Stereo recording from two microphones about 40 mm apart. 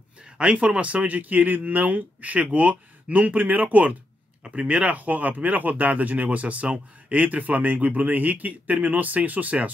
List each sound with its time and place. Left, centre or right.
0.4 s speech: right